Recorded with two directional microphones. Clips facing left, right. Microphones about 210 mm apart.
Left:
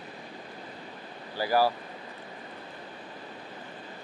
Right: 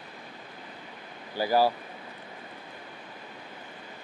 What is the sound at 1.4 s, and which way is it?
Speech, 20° right (ahead or behind).